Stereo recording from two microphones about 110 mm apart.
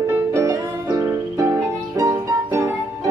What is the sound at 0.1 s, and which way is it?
Music, 25° right (ahead or behind).